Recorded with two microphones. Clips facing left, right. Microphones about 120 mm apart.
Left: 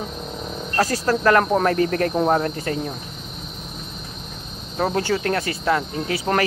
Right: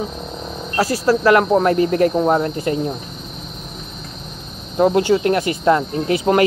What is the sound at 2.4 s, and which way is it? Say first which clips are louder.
Speech: right 4 dB; 20° right (ahead or behind).